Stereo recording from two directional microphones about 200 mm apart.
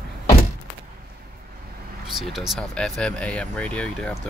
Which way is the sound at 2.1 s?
Centre (ahead or behind).